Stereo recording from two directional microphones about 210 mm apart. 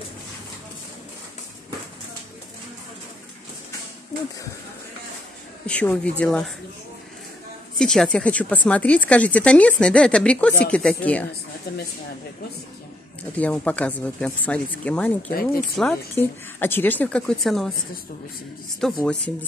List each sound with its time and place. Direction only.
5.7 s speech: 5° left (ahead or behind)
7.8 s speech: 5° left (ahead or behind)
11.7 s speech: 45° left (ahead or behind)
13.4 s speech: 5° left (ahead or behind)
18.8 s speech: centre (ahead or behind)